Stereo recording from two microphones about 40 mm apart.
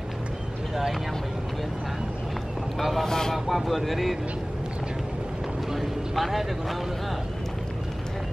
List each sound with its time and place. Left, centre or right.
2.8 s speech: centre
3.1 s speech: centre
3.4 s speech: centre
5.7 s a sound: centre